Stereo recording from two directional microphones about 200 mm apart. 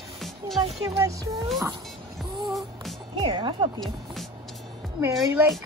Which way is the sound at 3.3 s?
25° right (ahead or behind).